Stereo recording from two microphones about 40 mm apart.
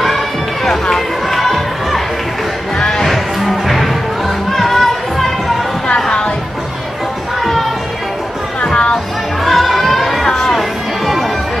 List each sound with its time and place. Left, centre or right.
0.7 s music: centre
8.6 s music: left
8.9 s music: centre
10.2 s a sound: centre